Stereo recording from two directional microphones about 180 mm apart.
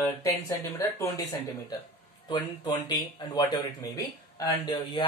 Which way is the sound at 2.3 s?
20° left (ahead or behind).